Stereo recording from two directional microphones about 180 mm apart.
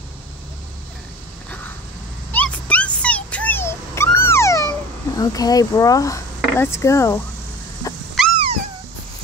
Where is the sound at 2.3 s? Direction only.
10° left (ahead or behind).